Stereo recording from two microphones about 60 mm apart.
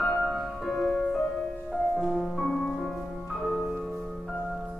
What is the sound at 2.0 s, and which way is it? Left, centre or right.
Music, centre.